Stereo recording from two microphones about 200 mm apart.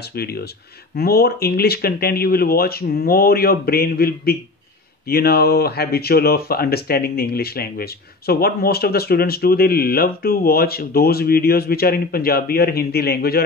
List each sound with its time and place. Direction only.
0.1 s speech: 50° left (ahead or behind)